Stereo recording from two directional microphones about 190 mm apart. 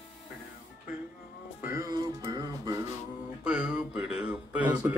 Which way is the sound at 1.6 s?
15° right (ahead or behind).